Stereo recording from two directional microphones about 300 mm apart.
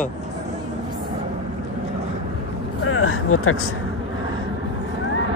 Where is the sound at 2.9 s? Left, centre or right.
Left.